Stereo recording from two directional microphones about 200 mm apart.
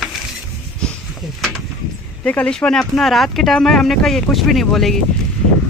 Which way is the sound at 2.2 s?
5° left (ahead or behind).